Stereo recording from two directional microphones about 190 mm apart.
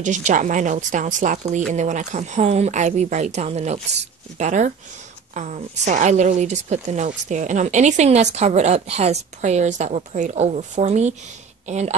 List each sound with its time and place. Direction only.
0.0 s a woman's voice: 40° right (ahead or behind)